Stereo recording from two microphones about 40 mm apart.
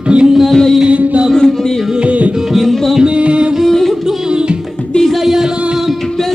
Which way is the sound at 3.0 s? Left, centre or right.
Right.